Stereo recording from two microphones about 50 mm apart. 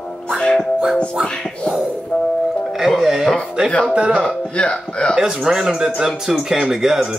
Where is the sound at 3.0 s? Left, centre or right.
Centre.